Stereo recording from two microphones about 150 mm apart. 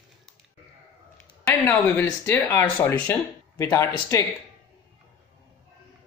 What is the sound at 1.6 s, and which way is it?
Speech, 15° left (ahead or behind).